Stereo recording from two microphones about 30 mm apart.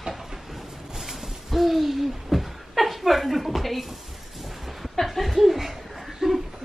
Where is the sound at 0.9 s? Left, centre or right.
Centre.